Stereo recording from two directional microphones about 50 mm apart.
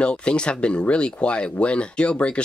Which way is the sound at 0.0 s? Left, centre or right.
Left.